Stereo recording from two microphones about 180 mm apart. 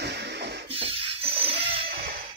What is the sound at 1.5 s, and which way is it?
Music, 85° right.